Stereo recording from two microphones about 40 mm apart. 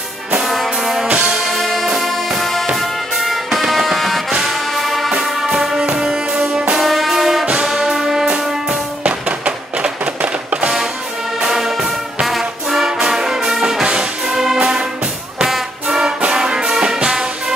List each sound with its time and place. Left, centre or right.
0.5 s music: centre
1.2 s music: right
1.5 s music: centre
3.6 s music: centre
5.1 s music: centre
6.3 s music: right
6.8 s music: centre
7.6 s brass instrument: centre
9.8 s music: right
11.4 s music: centre
12.3 s brass instrument: centre
13.0 s music: centre